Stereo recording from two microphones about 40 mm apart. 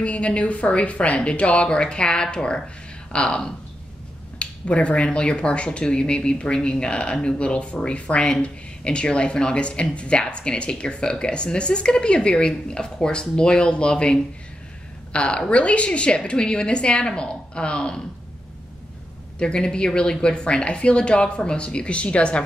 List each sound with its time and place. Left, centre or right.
0.0 s speech: left
19.3 s speech: left